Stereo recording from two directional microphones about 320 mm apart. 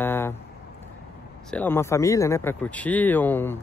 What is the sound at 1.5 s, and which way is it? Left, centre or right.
Speech, centre.